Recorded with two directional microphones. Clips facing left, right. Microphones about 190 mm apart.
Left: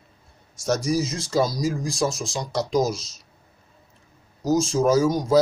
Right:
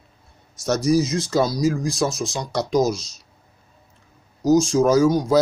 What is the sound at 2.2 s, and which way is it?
Speech, centre (ahead or behind).